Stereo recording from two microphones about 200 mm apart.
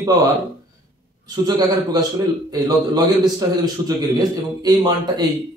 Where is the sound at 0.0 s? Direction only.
15° right (ahead or behind).